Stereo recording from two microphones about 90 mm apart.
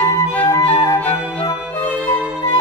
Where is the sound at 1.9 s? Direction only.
15° left (ahead or behind).